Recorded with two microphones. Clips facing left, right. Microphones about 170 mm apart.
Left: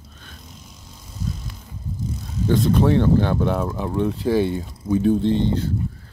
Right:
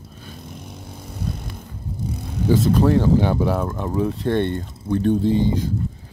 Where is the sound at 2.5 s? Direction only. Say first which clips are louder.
Right 1 dB; centre (ahead or behind).